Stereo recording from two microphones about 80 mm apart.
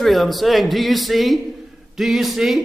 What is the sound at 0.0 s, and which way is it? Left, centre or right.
A man's voice, centre.